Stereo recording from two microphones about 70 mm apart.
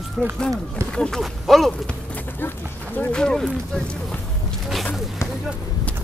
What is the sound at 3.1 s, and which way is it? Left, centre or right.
Speech, centre.